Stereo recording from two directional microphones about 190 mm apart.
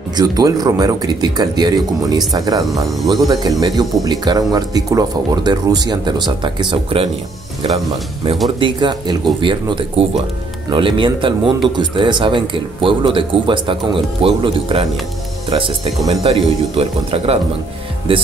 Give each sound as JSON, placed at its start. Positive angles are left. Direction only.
{"t": 0.1, "sound": "speech", "side_deg": -20}
{"t": 8.5, "sound": "speech", "side_deg": -25}